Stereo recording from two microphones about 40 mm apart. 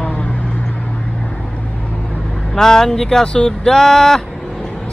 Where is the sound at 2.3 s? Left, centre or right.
Centre.